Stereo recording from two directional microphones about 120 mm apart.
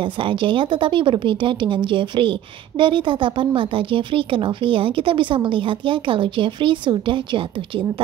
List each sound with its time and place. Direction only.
0.0 s speech: 45° right (ahead or behind)